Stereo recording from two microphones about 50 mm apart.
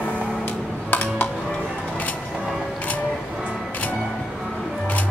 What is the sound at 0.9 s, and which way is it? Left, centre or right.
Music, left.